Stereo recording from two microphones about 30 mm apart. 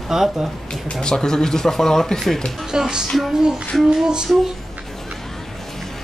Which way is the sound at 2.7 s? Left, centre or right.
Right.